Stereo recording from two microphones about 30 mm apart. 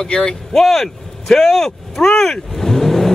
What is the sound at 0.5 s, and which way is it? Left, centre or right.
Speech, centre.